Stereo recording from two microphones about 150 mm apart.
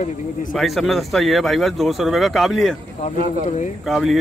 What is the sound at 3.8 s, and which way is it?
Speech, centre (ahead or behind).